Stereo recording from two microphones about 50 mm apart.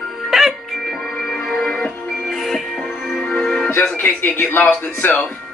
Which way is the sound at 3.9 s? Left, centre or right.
Left.